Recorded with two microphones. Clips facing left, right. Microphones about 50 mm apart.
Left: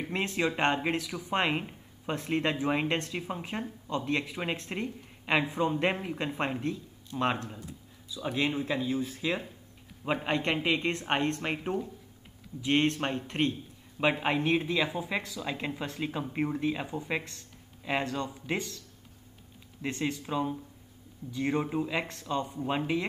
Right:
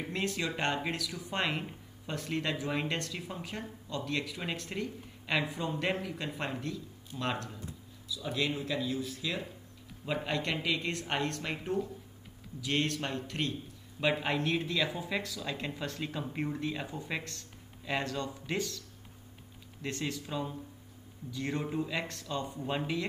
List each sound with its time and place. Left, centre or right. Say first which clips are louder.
0.1 s speech: left 5 dB; left
19.8 s speech: left 4 dB; left